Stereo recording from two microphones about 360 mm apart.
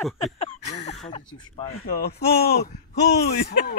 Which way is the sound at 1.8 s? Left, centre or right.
Left.